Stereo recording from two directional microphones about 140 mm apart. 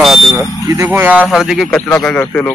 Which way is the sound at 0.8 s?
10° right (ahead or behind).